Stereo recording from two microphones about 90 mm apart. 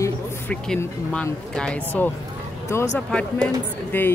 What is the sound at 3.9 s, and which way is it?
Speech, 20° left (ahead or behind).